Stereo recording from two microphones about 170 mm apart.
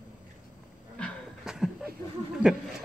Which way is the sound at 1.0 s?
5° right (ahead or behind).